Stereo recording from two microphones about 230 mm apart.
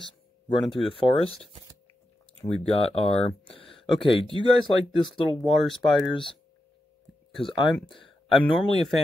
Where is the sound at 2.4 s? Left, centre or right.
Left.